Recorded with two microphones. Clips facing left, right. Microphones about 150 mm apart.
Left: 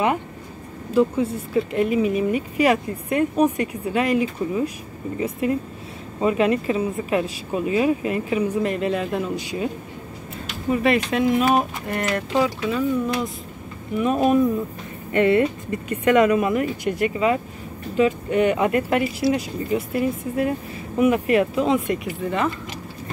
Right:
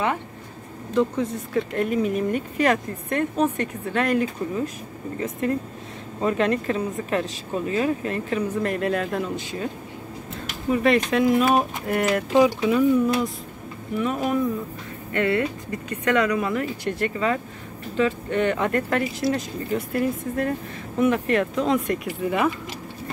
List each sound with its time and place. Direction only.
0.9 s speech: 5° left (ahead or behind)
10.7 s speech: 5° left (ahead or behind)
13.9 s speech: 20° left (ahead or behind); by 22.5 s 10° right (ahead or behind)